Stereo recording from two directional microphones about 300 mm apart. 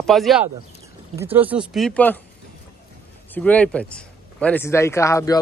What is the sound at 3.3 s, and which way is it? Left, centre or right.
Speech, centre.